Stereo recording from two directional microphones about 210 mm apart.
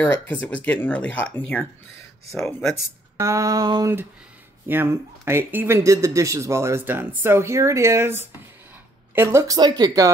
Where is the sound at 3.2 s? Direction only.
15° right (ahead or behind).